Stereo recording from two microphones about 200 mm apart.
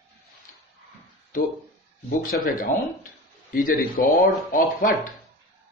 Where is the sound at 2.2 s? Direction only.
45° left (ahead or behind).